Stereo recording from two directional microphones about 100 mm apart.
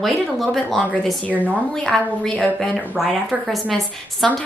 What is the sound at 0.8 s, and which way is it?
Speech, 15° left (ahead or behind).